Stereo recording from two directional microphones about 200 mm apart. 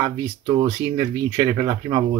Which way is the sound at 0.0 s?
20° right (ahead or behind).